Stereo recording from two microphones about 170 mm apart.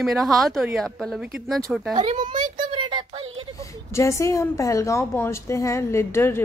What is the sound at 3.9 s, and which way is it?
A woman's voice, 15° left (ahead or behind).